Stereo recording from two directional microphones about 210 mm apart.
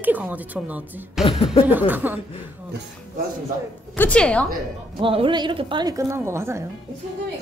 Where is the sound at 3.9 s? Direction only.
5° left (ahead or behind).